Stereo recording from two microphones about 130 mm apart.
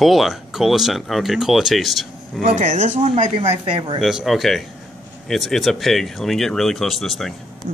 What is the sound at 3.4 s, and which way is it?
Speech, 45° right (ahead or behind).